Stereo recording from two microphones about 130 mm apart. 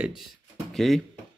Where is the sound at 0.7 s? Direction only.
Centre (ahead or behind).